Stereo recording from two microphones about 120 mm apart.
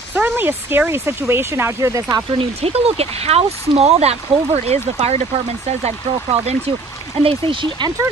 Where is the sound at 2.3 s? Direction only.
55° right (ahead or behind).